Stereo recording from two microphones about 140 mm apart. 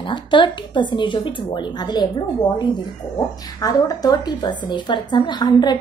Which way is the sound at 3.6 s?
25° left (ahead or behind).